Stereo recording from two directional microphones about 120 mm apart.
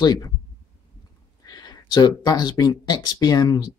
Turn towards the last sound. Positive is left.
turn(degrees=35)  # may be behind; listen again after turning